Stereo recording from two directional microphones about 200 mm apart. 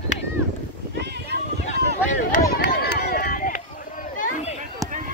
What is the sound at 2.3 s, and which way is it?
Run, 50° left (ahead or behind).